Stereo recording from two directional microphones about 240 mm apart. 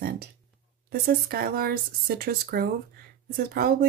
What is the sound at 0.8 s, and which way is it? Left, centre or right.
Speech, right.